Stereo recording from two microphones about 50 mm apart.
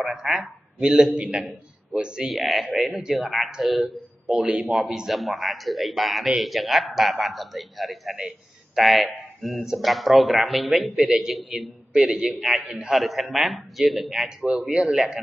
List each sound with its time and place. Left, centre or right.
0.1 s a man's voice: centre
2.2 s a man's voice: centre
4.4 s speech: right
4.6 s a man's voice: centre
11.9 s a man's voice: centre
12.4 s a man's voice: centre
14.7 s speech: centre